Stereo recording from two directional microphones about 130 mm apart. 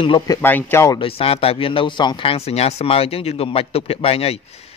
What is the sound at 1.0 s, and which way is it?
A man's voice, 45° left (ahead or behind).